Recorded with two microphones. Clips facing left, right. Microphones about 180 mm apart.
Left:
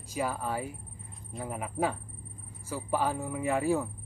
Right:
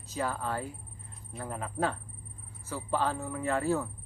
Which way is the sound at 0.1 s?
10° left (ahead or behind).